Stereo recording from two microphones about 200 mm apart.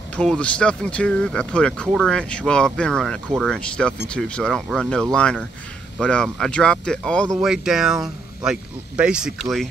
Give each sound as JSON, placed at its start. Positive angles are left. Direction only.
{"t": 0.1, "sound": "speech", "side_deg": 5}